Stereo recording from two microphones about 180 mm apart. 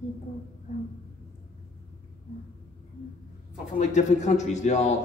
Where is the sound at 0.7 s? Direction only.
40° left (ahead or behind).